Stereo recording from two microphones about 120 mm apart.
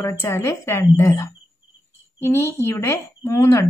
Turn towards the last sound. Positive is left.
turn(degrees=20)  # may be behind; listen again after turning